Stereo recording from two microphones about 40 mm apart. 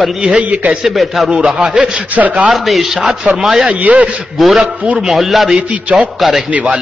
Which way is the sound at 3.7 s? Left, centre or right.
Right.